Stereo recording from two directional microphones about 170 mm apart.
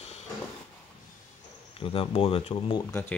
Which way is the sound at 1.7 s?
30° left (ahead or behind).